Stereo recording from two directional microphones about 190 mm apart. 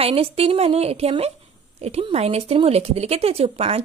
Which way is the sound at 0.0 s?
30° right (ahead or behind).